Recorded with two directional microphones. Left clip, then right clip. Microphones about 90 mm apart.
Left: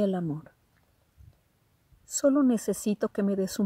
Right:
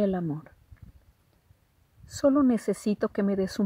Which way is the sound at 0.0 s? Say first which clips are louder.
Right 1 dB; 30° left (ahead or behind).